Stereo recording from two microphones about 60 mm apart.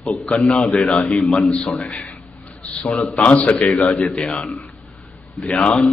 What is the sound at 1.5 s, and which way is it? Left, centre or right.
Speech, centre.